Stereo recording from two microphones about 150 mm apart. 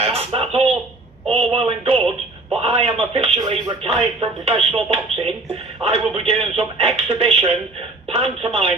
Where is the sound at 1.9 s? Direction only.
Centre (ahead or behind).